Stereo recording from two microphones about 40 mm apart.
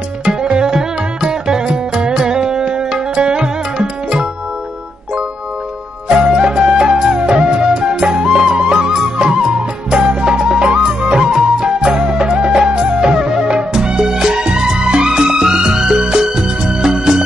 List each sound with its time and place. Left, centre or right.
0.4 s music: centre
6.0 s music: centre
12.5 s music: centre